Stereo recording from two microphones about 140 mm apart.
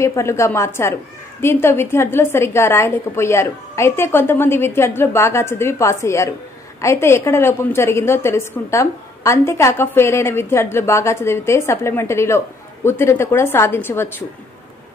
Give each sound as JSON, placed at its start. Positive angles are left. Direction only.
{"t": 0.0, "sound": "a woman's voice", "side_deg": 20}